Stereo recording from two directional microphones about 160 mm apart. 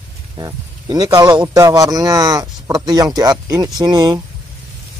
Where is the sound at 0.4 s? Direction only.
25° right (ahead or behind).